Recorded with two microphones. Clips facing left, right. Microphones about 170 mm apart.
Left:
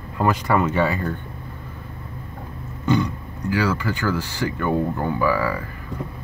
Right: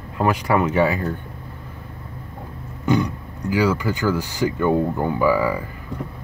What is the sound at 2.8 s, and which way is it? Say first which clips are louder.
Speech: right 1 dB; 15° right (ahead or behind).